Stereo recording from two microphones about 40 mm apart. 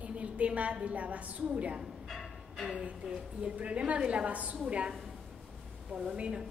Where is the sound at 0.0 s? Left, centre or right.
Right.